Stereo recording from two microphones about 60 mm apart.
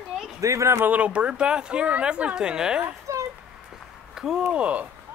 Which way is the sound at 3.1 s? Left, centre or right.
Right.